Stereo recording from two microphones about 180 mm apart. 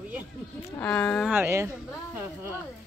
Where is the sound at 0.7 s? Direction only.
5° left (ahead or behind).